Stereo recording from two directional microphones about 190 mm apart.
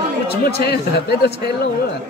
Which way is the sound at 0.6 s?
60° left (ahead or behind).